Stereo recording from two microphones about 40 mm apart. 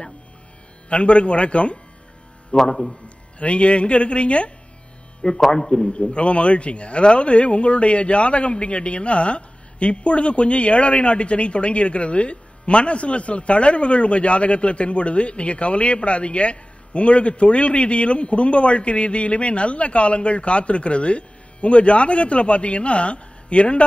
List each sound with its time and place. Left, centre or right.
0.8 s speech: left
2.5 s a man's voice: centre
2.9 s speech: left
5.5 s speech: centre
5.9 s speech: left